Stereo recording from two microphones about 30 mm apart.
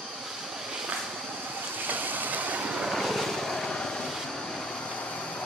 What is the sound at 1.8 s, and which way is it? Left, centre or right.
Vehicle, right.